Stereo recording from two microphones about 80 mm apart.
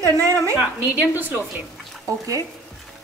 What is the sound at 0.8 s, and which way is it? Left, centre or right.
Speech, right.